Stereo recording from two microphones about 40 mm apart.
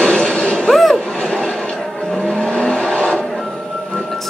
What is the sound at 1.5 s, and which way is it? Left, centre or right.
Vehicle, left.